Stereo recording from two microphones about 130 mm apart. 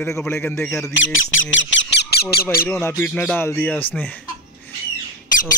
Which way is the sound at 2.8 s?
15° left (ahead or behind).